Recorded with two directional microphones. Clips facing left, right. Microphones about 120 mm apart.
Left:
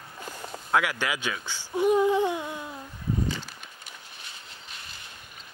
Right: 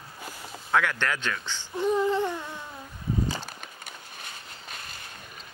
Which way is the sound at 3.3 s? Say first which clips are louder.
Even; 35° right (ahead or behind).